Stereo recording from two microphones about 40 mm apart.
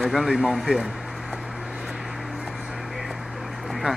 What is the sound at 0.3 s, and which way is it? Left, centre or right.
Speech, centre.